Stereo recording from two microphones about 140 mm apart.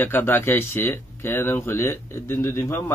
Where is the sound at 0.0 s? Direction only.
15° left (ahead or behind).